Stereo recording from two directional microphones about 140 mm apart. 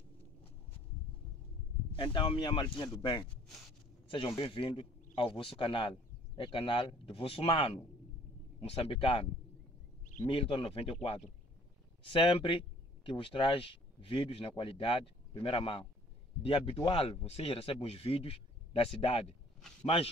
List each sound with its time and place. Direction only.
1.9 s speech: 40° left (ahead or behind)
4.4 s speech: 40° left (ahead or behind)
10.2 s speech: 40° left (ahead or behind)